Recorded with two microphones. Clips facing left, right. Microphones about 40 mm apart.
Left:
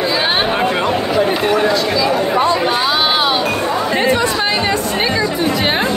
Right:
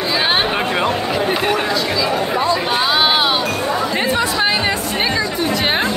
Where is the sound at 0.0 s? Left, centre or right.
Centre.